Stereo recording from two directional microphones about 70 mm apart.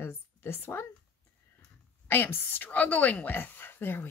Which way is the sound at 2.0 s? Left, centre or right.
Left.